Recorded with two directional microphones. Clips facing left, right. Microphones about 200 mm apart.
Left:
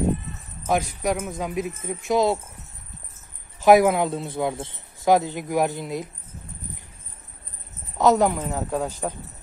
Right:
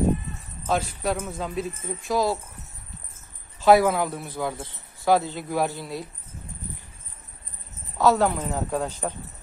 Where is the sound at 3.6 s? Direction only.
20° left (ahead or behind).